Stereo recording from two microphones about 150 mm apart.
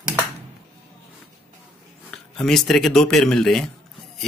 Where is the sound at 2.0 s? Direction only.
5° left (ahead or behind).